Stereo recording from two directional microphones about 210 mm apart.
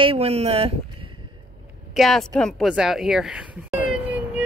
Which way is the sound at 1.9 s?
Centre (ahead or behind).